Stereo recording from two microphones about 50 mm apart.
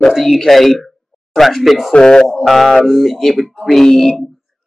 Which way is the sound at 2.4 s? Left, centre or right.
Centre.